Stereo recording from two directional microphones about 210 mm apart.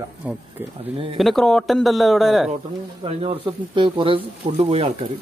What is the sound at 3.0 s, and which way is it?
Speech, 30° right (ahead or behind).